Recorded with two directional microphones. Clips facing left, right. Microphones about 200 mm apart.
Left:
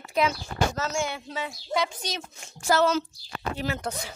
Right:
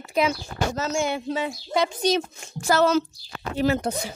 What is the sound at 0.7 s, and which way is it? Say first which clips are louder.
Speech: right 4 dB; 20° right (ahead or behind).